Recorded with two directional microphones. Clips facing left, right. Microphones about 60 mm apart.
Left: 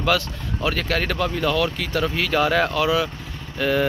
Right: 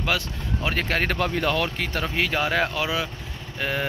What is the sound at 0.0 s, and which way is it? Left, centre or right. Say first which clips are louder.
Speech: left 5 dB; centre.